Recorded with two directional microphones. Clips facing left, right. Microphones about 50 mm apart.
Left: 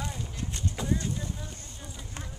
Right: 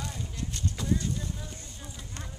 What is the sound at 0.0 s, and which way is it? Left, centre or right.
Clip-clop, centre.